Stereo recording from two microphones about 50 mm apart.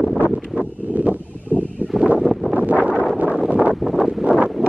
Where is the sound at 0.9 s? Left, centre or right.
Right.